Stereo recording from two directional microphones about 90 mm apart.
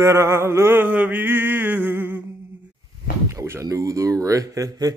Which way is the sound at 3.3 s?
30° right (ahead or behind).